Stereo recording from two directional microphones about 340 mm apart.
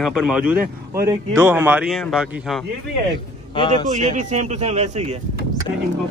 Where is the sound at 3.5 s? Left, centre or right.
Centre.